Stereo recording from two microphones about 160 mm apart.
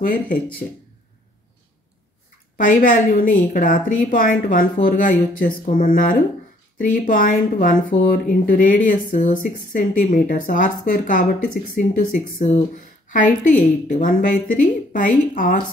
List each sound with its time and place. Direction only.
0.0 s speech: 60° left (ahead or behind)
2.5 s speech: 60° left (ahead or behind)